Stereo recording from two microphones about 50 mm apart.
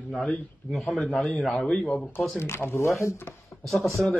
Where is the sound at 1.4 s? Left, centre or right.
Centre.